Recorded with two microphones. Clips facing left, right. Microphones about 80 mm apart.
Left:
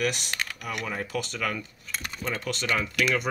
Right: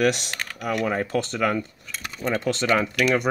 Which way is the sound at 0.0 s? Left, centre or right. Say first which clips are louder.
Right 6 dB; right.